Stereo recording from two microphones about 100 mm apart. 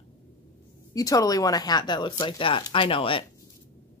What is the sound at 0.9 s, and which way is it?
A woman's voice, 35° left (ahead or behind).